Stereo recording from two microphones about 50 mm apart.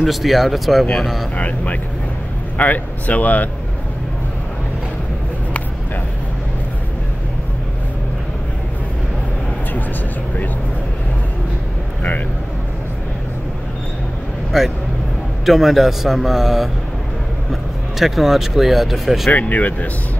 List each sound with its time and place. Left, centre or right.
0.0 s a man's voice: centre
1.3 s speech: left
14.5 s a man's voice: centre
19.3 s speech: left